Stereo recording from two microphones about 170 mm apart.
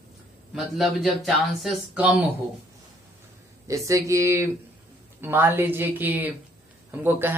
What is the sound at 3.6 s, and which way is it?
Speech, 20° right (ahead or behind).